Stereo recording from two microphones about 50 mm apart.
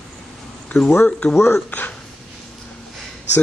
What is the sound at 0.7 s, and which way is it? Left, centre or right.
Speech, centre.